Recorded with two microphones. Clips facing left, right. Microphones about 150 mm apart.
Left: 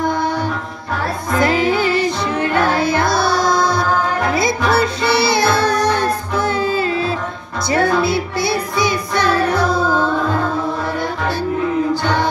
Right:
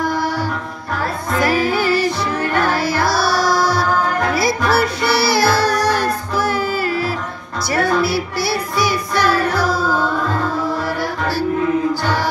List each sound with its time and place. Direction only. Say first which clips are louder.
1.4 s music: left 1 dB; 20° left (ahead or behind)